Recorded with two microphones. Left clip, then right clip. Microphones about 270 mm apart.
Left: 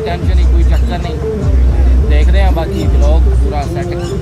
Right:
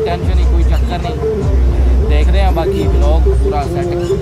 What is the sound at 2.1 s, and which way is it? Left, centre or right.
Speech, centre.